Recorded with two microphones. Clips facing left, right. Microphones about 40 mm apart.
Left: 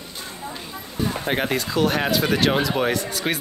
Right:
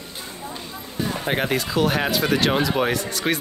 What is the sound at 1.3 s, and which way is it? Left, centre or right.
Speech, centre.